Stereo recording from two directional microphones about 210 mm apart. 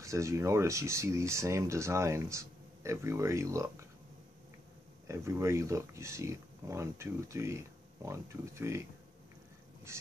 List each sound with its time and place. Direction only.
0.0 s speech: 15° right (ahead or behind)
5.0 s speech: 10° right (ahead or behind)
9.9 s speech: 15° right (ahead or behind)